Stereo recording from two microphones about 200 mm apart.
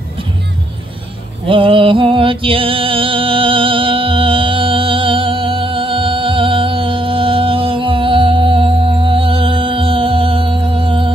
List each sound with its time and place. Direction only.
1.5 s music: 25° right (ahead or behind)